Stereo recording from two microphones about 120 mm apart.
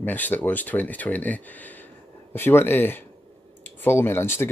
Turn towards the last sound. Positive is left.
turn(degrees=20)  # may be behind; listen again after turning